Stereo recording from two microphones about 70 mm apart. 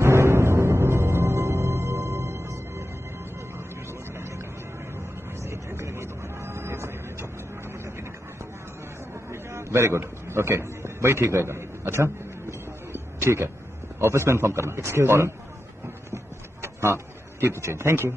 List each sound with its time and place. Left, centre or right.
0.0 s music: right
4.1 s music: right
9.1 s a sound: right
13.9 s a man's voice: right
16.6 s a man's voice: right